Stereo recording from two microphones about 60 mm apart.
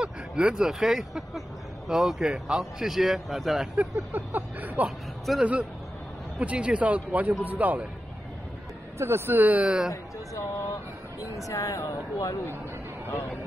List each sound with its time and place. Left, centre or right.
0.0 s a man's voice: centre
4.1 s speech: right
8.9 s speech: right
10.3 s speech: left